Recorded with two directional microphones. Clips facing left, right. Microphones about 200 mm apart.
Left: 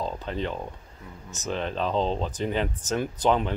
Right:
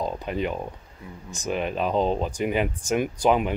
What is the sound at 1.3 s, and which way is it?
Speech, 10° right (ahead or behind).